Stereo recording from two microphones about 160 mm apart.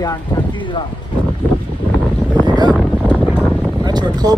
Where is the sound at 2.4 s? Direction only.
25° right (ahead or behind).